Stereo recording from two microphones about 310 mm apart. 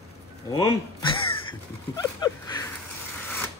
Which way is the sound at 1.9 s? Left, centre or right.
Centre.